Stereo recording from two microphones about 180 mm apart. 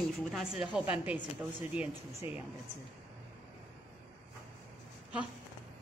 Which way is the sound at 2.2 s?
30° left (ahead or behind).